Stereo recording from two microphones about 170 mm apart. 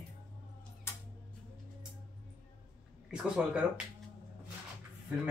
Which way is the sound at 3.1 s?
5° right (ahead or behind).